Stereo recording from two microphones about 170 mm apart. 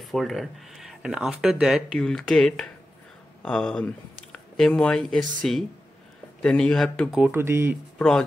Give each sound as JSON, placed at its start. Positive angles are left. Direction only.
{"t": 0.0, "sound": "speech", "side_deg": 0}
{"t": 7.2, "sound": "speech", "side_deg": -15}